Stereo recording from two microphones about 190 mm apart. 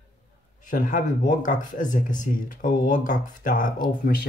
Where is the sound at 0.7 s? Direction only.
45° left (ahead or behind).